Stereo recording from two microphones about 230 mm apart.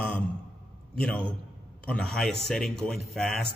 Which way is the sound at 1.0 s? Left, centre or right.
Centre.